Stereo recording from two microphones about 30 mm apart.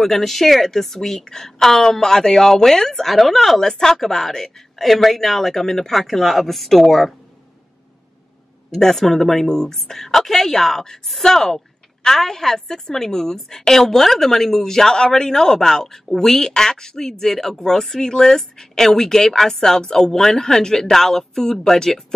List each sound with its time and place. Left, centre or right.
0.0 s a woman's voice: centre
3.6 s a woman's voice: centre
8.7 s a woman's voice: centre